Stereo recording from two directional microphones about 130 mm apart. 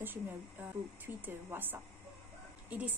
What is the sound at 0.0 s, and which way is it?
Speech, 15° right (ahead or behind).